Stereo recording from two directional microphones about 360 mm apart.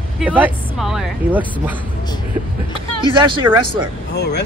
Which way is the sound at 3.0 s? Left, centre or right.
Centre.